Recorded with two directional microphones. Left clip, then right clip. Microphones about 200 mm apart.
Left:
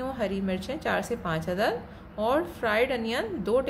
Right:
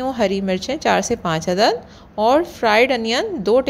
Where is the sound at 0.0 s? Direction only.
40° right (ahead or behind).